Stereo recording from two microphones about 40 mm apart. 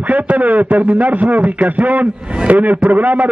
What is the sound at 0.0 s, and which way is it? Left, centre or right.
Speech, right.